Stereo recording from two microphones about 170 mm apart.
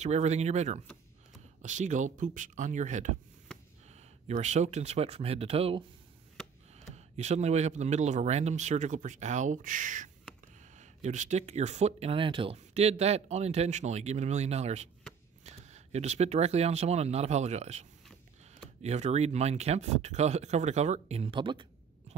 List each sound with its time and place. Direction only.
0.0 s speech: 40° right (ahead or behind)
7.0 s speech: 40° right (ahead or behind)